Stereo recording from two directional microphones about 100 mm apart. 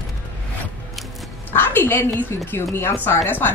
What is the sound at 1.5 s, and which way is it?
A woman's voice, 20° left (ahead or behind).